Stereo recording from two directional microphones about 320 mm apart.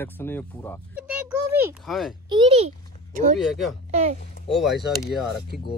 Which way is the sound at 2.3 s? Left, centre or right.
Centre.